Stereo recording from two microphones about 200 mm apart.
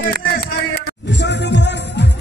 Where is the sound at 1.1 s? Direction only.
60° left (ahead or behind).